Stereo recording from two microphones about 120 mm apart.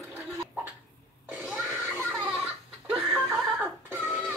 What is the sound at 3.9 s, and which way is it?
Music, 20° right (ahead or behind).